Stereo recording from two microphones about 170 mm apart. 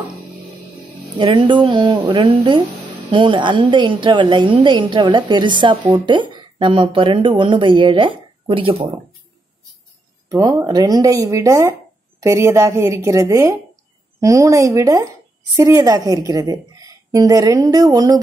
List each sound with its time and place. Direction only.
1.1 s a woman's voice: 30° right (ahead or behind)
10.3 s a woman's voice: 20° right (ahead or behind)